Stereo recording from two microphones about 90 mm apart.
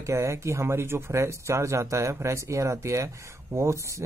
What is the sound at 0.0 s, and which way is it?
Speech, 30° right (ahead or behind).